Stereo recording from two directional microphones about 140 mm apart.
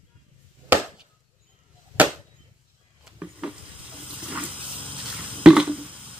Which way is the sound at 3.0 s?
5° right (ahead or behind).